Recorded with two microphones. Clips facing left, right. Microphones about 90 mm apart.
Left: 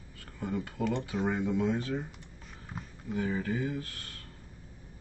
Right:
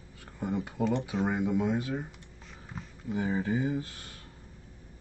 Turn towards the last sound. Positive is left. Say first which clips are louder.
# right 4 dB
turn(degrees=-20)  # may be behind; listen again after turning